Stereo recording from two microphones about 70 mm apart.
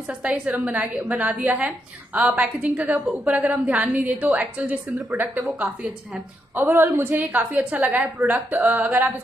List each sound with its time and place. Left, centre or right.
0.1 s a woman's voice: centre
6.5 s a woman's voice: right